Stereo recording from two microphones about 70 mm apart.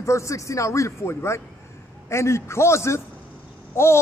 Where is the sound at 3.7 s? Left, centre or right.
Left.